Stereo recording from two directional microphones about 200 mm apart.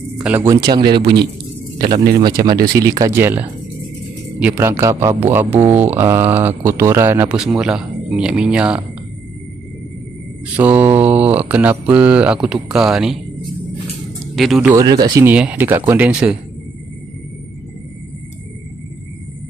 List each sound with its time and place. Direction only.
0.2 s speech: 10° right (ahead or behind)
10.5 s speech: 10° right (ahead or behind)
14.3 s speech: centre (ahead or behind)
14.8 s speech: 20° right (ahead or behind)
15.2 s speech: 10° right (ahead or behind)